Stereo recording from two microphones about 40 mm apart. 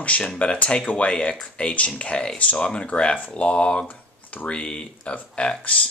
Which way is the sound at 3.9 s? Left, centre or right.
Left.